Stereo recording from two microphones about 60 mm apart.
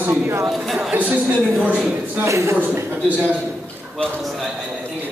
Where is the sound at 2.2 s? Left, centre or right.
Right.